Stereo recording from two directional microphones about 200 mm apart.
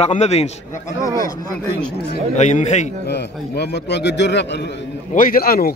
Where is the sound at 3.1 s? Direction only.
55° left (ahead or behind).